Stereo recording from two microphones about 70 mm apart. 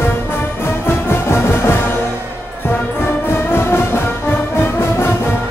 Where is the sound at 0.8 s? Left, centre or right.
Left.